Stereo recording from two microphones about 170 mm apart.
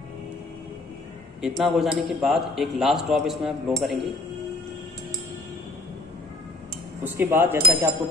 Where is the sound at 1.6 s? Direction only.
Centre (ahead or behind).